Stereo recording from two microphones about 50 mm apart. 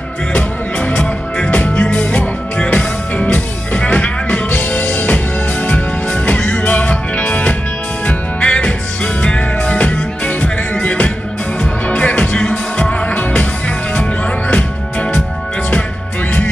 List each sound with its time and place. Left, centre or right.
0.3 s music: left
14.5 s music: left